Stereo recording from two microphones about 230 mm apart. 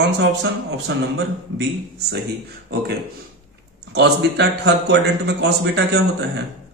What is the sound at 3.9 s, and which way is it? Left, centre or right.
A man's voice, right.